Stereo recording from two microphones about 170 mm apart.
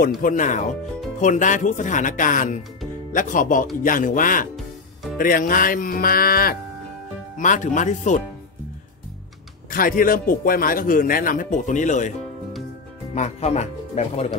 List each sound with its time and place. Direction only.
0.2 s a man's voice: 50° left (ahead or behind)
7.3 s speech: 50° left (ahead or behind)
9.7 s a man's voice: 55° left (ahead or behind)
13.1 s speech: 40° left (ahead or behind)